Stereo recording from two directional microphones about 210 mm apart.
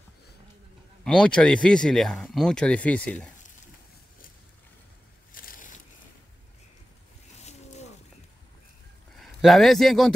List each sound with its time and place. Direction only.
1.0 s speech: 5° left (ahead or behind)
5.3 s a sound: 40° left (ahead or behind)
7.3 s boat: 30° left (ahead or behind)
9.2 s a man's voice: centre (ahead or behind)